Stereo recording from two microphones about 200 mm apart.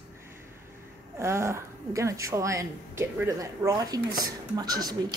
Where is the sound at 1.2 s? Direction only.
15° right (ahead or behind).